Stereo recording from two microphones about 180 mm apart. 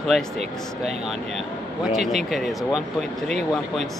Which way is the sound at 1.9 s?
Centre (ahead or behind).